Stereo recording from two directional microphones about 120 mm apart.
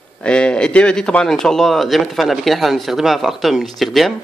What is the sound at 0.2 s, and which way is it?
Speech, 10° left (ahead or behind).